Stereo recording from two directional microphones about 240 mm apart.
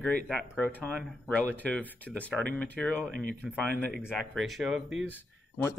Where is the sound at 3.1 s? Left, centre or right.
Right.